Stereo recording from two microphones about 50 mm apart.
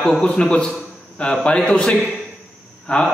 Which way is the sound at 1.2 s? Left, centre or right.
Centre.